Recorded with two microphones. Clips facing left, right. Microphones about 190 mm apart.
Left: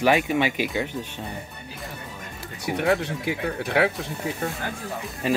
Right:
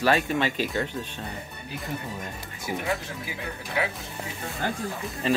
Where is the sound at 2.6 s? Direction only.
70° left (ahead or behind).